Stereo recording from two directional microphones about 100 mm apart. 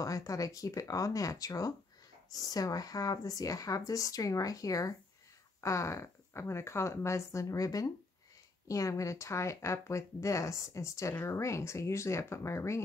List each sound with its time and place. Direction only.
0.0 s speech: 35° left (ahead or behind)